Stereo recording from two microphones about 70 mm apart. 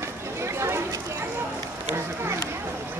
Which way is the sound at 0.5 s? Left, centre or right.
Right.